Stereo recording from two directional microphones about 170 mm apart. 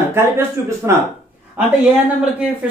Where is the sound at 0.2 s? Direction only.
15° right (ahead or behind).